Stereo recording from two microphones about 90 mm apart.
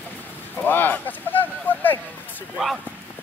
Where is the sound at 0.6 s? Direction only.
20° left (ahead or behind).